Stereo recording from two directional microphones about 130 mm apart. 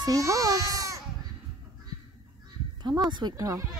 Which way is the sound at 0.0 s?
25° right (ahead or behind).